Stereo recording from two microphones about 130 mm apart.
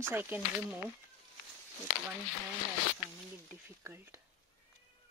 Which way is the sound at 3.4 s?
20° right (ahead or behind).